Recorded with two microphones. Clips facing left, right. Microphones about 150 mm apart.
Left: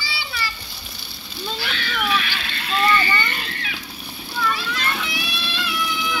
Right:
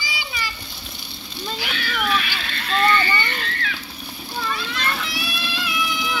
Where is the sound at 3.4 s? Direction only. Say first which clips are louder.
Right 3 dB; 15° left (ahead or behind).